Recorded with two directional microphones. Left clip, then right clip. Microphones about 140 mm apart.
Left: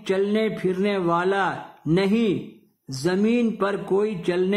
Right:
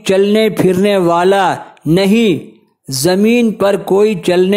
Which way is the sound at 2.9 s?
40° right (ahead or behind).